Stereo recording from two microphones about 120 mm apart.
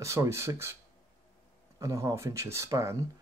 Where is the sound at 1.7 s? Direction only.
25° right (ahead or behind).